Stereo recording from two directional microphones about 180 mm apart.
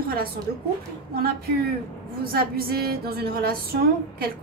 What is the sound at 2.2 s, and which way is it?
A woman's voice, 55° right (ahead or behind).